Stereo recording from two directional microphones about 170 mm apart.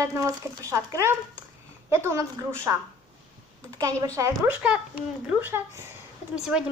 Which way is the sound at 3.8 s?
20° right (ahead or behind).